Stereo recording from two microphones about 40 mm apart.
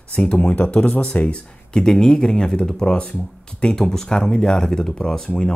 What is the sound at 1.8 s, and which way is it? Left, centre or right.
Speech, centre.